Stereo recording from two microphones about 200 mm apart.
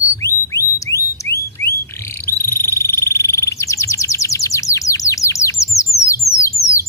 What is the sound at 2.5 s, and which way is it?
Bird, 10° left (ahead or behind).